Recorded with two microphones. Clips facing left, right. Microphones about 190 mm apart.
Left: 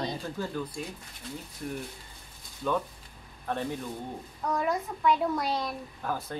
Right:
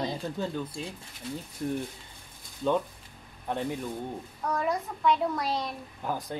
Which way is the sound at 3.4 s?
15° right (ahead or behind).